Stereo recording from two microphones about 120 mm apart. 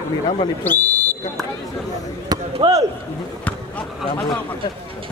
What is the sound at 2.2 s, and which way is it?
Speech, 35° right (ahead or behind).